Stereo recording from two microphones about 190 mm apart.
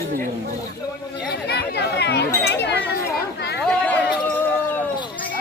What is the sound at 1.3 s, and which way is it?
Chatter, 60° left (ahead or behind).